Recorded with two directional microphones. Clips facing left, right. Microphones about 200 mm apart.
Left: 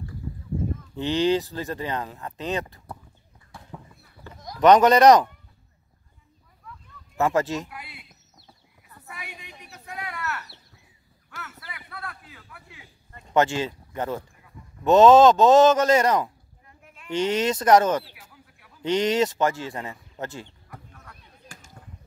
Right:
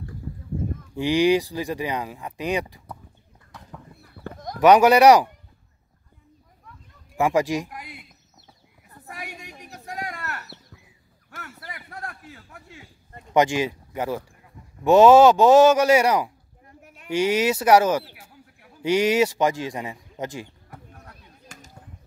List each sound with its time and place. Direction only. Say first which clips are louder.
0.9 s speech: right 3 dB; 10° right (ahead or behind)
4.0 s clip-clop: right 7 dB; 55° right (ahead or behind)
4.6 s speech: right 1 dB; 10° right (ahead or behind)
7.2 s speech: right 2 dB; 15° right (ahead or behind)
8.8 s a sound: right 4 dB; 45° right (ahead or behind)
13.3 s speech: right 2 dB; 15° right (ahead or behind)
20.9 s basketball bounce: right 2 dB; 35° right (ahead or behind)